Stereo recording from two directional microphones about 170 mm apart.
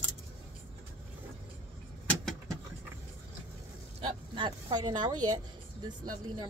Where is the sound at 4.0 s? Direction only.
30° right (ahead or behind).